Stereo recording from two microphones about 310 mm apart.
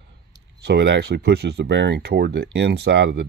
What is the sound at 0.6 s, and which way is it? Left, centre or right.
Speech, right.